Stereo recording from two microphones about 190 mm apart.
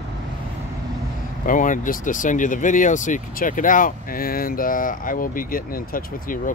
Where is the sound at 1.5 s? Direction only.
45° left (ahead or behind).